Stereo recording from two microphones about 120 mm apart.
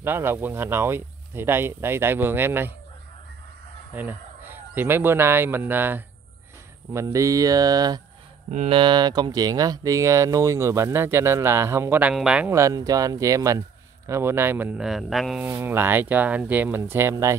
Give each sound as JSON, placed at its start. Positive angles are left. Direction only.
{"t": 0.0, "sound": "speech", "side_deg": -20}
{"t": 3.9, "sound": "speech", "side_deg": -15}
{"t": 8.6, "sound": "speech", "side_deg": -45}
{"t": 12.4, "sound": "speech", "side_deg": -25}
{"t": 14.8, "sound": "speech", "side_deg": 0}
{"t": 15.4, "sound": "speech", "side_deg": -20}